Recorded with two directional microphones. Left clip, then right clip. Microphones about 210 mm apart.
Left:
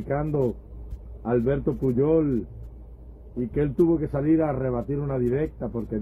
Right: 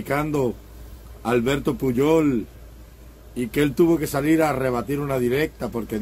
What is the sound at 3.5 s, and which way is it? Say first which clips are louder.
Speech: right 3 dB; 15° right (ahead or behind).